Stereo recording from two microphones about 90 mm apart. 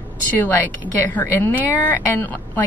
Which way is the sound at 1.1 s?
25° left (ahead or behind).